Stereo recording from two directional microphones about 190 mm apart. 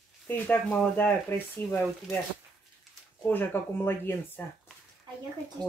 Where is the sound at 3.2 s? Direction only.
10° left (ahead or behind).